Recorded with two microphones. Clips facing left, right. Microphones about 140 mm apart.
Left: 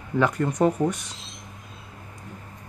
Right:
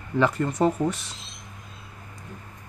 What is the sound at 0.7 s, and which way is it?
Speech, 15° left (ahead or behind).